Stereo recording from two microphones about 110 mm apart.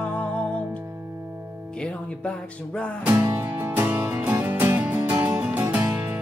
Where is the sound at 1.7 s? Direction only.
10° left (ahead or behind).